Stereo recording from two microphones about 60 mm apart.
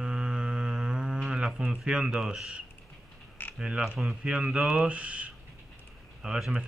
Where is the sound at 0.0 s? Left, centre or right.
Centre.